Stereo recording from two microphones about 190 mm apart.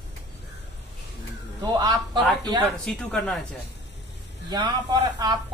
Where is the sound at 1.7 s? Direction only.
20° right (ahead or behind).